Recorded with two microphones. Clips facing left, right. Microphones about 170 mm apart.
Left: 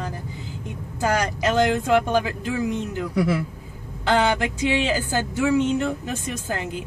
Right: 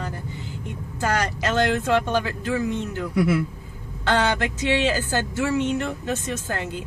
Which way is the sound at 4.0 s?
15° left (ahead or behind).